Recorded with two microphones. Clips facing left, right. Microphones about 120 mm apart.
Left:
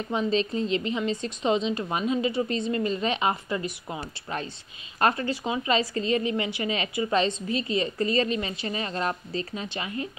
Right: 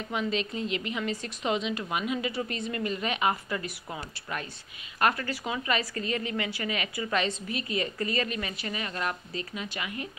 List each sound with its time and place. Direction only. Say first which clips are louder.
0.1 s a woman's voice: left 5 dB; 30° left (ahead or behind)